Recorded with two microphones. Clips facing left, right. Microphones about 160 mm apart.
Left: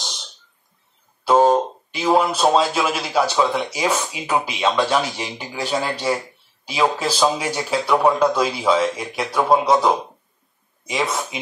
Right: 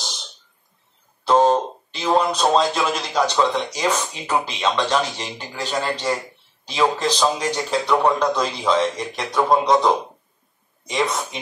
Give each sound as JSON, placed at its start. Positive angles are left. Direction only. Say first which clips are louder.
{"t": 1.2, "sound": "speech", "louder": "left 1 dB", "side_deg": 10}